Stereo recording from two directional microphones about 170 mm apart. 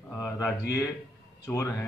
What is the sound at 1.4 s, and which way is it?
Speech, 15° left (ahead or behind).